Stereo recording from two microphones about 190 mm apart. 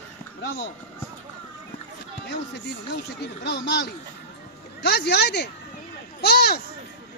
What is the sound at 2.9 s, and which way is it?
Speech, 60° left (ahead or behind).